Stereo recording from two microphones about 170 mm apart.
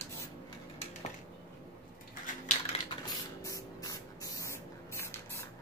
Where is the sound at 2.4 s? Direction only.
40° left (ahead or behind).